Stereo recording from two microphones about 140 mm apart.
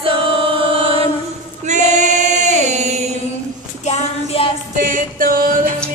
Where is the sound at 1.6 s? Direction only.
60° right (ahead or behind).